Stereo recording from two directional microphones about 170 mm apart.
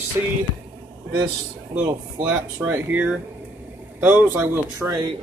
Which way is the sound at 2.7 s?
10° right (ahead or behind).